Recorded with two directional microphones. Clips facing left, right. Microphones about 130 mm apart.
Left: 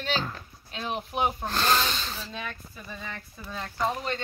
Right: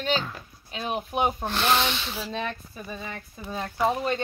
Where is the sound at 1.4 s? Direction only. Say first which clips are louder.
Right 2 dB; centre (ahead or behind).